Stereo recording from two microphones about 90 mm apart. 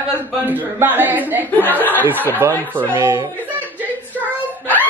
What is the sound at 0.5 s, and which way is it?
A woman's voice, 20° right (ahead or behind).